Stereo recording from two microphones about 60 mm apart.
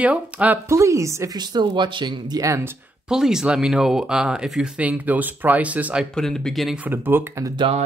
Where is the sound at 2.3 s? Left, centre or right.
Right.